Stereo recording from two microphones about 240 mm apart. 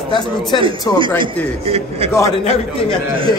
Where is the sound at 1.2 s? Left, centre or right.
Right.